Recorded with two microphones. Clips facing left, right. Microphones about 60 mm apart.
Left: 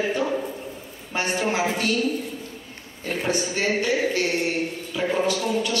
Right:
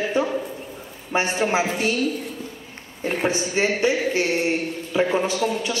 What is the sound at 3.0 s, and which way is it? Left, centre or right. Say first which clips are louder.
A woman's voice: right 2 dB; right.